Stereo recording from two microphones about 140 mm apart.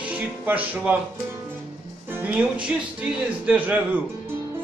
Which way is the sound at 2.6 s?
10° right (ahead or behind).